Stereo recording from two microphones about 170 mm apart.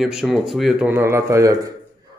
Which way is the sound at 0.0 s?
Centre (ahead or behind).